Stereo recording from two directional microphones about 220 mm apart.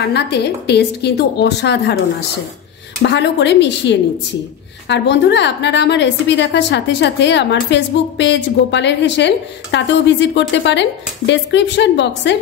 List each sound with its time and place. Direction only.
0.1 s a woman's voice: 50° left (ahead or behind)